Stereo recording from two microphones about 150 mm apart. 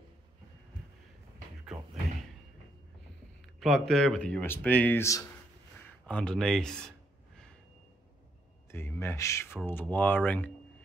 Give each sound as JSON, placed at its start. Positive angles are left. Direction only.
{"t": 3.5, "sound": "speech", "side_deg": 0}
{"t": 6.0, "sound": "speech", "side_deg": 5}
{"t": 8.7, "sound": "speech", "side_deg": 15}